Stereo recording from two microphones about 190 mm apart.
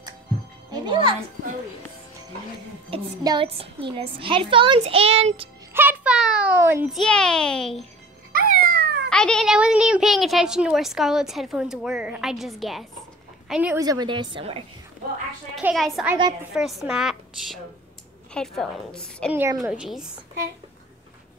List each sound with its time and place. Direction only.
0.7 s music: 25° right (ahead or behind)
2.9 s a woman's voice: 25° right (ahead or behind)
5.7 s a sound: 10° right (ahead or behind)
7.0 s a woman's voice: 5° left (ahead or behind)
8.3 s music: 50° right (ahead or behind)
9.1 s a woman's voice: 5° left (ahead or behind)
13.8 s a woman's voice: 25° right (ahead or behind)
15.5 s a woman's voice: centre (ahead or behind)